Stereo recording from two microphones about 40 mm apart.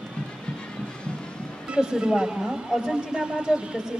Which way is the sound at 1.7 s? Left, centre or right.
Right.